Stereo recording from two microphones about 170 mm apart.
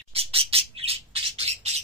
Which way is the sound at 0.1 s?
35° right (ahead or behind).